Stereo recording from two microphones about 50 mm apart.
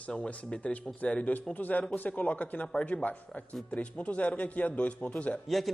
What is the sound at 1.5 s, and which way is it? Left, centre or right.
Speech, left.